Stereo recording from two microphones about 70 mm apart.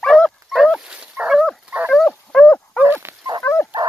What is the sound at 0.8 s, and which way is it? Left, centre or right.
Dog, centre.